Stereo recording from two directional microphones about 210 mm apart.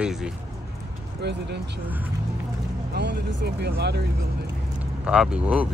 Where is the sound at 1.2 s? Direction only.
55° right (ahead or behind).